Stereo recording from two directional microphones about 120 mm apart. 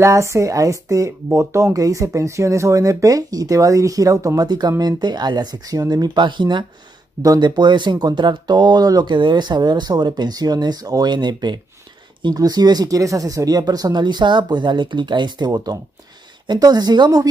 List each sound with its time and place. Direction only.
0.0 s speech: 25° right (ahead or behind)